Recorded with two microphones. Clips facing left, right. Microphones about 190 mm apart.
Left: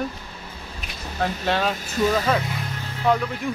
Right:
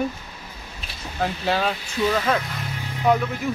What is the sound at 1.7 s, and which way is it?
Speech, 45° left (ahead or behind).